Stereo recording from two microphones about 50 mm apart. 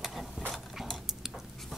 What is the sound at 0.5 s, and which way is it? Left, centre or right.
Dog, centre.